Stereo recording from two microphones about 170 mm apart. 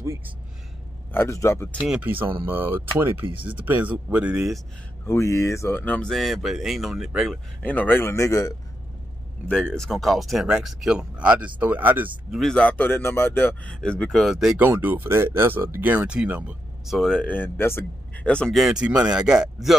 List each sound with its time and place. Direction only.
0.0 s a sound: 15° right (ahead or behind)
1.1 s speech: 15° left (ahead or behind)
1.8 s speech: 10° right (ahead or behind)
5.0 s speech: 15° left (ahead or behind); by 7.3 s centre (ahead or behind)
7.6 s speech: 10° left (ahead or behind)
9.5 s speech: 5° left (ahead or behind)
12.4 s speech: 5° left (ahead or behind)